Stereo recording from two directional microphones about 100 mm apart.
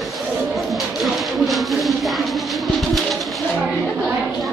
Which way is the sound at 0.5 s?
Centre (ahead or behind).